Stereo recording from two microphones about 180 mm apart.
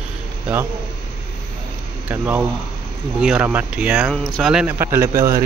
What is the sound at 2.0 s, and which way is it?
Speech, 10° right (ahead or behind).